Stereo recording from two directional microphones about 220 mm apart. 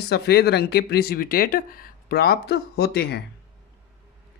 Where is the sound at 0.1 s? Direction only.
45° left (ahead or behind).